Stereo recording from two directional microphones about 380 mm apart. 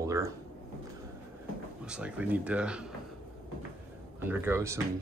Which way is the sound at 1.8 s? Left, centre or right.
Centre.